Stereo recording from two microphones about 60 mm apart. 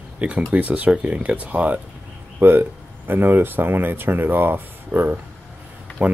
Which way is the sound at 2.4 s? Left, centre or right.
Right.